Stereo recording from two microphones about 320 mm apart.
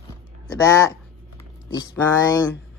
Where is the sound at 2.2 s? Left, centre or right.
Centre.